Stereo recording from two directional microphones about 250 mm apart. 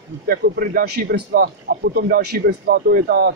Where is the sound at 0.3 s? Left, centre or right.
Right.